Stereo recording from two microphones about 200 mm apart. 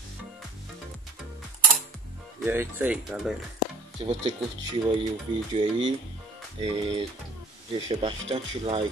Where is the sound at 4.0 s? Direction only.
25° right (ahead or behind).